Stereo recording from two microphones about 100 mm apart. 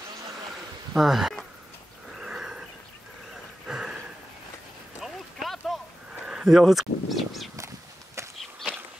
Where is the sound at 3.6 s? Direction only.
10° right (ahead or behind).